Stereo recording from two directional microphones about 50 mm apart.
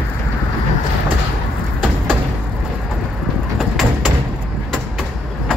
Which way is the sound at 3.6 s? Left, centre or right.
Centre.